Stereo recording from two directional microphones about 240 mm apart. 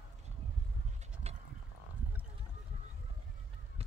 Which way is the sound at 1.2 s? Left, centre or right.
Right.